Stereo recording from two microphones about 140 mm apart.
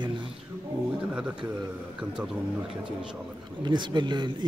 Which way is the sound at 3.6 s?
35° right (ahead or behind).